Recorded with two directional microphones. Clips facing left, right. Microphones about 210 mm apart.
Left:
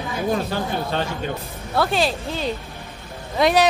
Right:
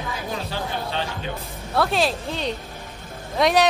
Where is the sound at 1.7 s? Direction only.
Centre (ahead or behind).